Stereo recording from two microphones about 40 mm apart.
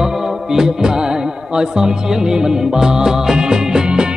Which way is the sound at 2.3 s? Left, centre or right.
Centre.